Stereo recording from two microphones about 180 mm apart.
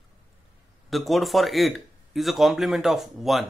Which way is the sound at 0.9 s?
Centre (ahead or behind).